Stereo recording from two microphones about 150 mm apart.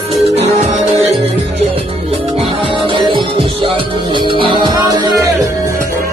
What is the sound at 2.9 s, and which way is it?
Music, 35° right (ahead or behind).